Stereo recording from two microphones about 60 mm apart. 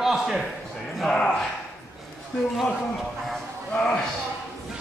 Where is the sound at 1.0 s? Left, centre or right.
Centre.